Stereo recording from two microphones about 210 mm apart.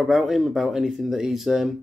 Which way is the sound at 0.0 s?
Centre (ahead or behind).